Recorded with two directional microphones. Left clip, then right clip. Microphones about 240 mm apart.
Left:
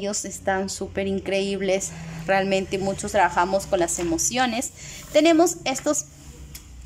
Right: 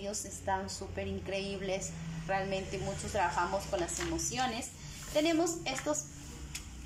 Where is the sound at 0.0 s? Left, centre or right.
Left.